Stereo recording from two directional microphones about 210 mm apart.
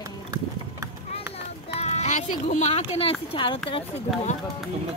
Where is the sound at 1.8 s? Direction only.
30° left (ahead or behind).